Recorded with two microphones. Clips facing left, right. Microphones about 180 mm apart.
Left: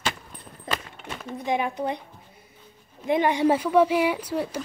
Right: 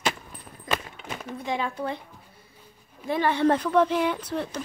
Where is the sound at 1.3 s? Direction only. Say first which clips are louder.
Left 4 dB; 20° left (ahead or behind).